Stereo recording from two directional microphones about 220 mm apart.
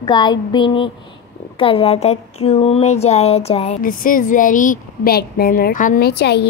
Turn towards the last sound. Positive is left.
turn(degrees=50)  # may be behind; listen again after turning